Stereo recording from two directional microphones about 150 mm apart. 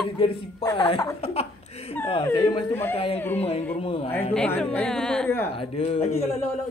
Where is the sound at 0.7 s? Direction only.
30° left (ahead or behind).